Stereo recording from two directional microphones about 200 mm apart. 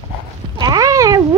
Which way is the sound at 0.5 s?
20° right (ahead or behind).